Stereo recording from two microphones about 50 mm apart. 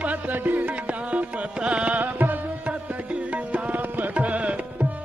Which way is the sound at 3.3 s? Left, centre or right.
Right.